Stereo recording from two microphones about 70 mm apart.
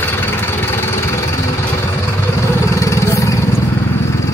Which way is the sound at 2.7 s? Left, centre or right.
Left.